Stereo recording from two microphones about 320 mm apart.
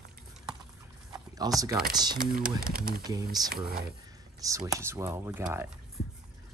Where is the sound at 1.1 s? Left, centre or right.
Centre.